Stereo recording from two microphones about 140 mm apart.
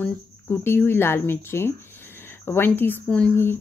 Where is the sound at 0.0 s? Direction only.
15° left (ahead or behind).